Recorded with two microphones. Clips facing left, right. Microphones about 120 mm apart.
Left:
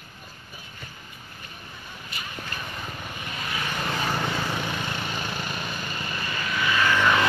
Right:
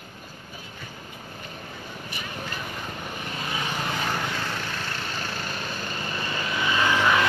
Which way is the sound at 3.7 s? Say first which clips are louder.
Left 2 dB; 5° right (ahead or behind).